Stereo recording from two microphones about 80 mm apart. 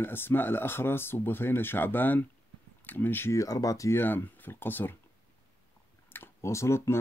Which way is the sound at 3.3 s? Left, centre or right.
Left.